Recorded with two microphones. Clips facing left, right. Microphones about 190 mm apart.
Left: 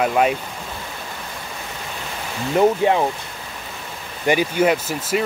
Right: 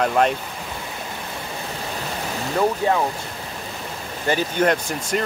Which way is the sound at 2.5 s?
20° left (ahead or behind).